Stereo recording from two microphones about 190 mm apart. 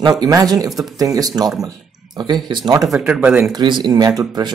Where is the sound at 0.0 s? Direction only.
20° right (ahead or behind).